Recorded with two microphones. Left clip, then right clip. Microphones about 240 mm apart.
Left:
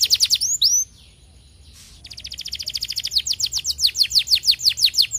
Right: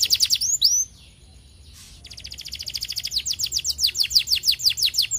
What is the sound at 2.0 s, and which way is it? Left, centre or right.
Bird, centre.